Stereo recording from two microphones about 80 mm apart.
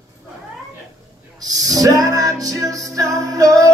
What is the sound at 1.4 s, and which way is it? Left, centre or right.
Music, right.